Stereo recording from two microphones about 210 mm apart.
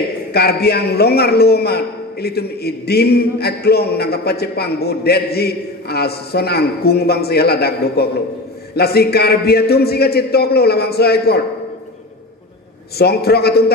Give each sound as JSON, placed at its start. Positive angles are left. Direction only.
{"t": 0.3, "sound": "a man's voice", "side_deg": 50}
{"t": 12.9, "sound": "a man's voice", "side_deg": 50}